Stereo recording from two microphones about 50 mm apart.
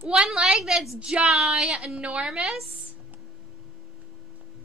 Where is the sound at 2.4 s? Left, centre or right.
Centre.